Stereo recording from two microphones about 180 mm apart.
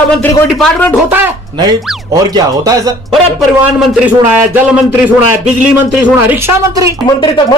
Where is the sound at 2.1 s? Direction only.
20° right (ahead or behind).